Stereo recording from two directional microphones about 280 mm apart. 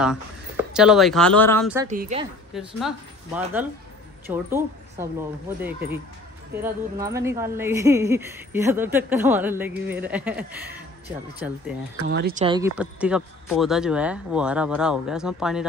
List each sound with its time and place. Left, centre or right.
0.0 s speech: centre
1.9 s a woman's voice: right
2.5 s a woman's voice: centre
11.4 s speech: centre
12.1 s speech: right
12.4 s speech: centre
12.7 s speech: centre